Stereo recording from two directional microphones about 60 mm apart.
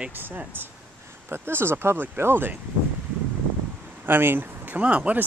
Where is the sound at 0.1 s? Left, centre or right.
Right.